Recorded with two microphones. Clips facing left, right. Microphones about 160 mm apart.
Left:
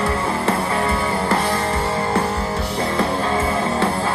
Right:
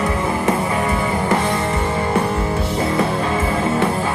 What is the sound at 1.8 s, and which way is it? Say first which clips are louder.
Music: right 1 dB; 30° left (ahead or behind).